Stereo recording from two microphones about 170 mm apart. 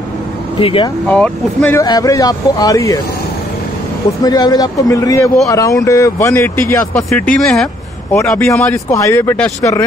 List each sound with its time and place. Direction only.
0.6 s speech: 30° left (ahead or behind)
1.0 s speech: 5° left (ahead or behind)
4.2 s speech: 20° left (ahead or behind)
7.0 s speech: 5° left (ahead or behind)